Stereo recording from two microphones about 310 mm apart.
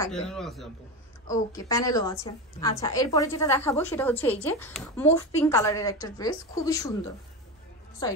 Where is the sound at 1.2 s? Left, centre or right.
Centre.